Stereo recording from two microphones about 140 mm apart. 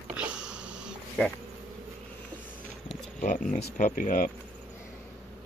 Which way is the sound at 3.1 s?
70° left (ahead or behind).